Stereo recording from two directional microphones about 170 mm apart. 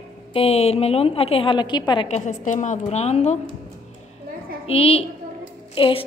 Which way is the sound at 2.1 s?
45° left (ahead or behind).